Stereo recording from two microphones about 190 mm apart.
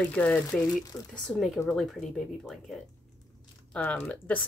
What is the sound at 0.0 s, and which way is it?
Speech, 5° left (ahead or behind).